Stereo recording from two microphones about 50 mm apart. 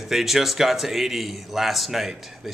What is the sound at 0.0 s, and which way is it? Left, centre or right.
A man's voice, centre.